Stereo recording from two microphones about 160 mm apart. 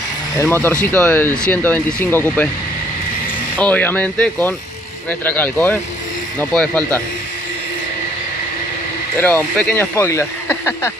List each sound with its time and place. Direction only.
0.4 s speech: 15° left (ahead or behind)
3.5 s speech: 10° left (ahead or behind)
9.2 s speech: 5° left (ahead or behind)